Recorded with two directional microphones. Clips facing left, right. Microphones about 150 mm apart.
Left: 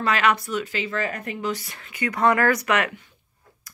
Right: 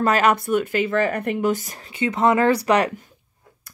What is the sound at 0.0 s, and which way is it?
Speech, 45° right (ahead or behind).